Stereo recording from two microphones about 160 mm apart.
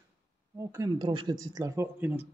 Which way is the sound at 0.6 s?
20° right (ahead or behind).